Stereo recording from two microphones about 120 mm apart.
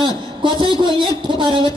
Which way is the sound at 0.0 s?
40° right (ahead or behind).